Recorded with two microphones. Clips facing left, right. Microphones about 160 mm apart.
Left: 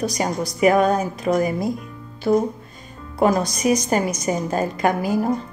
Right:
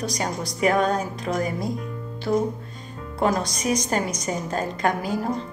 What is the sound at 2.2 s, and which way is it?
Music, 20° left (ahead or behind).